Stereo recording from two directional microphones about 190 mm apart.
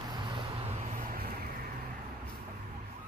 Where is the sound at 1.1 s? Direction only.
50° right (ahead or behind).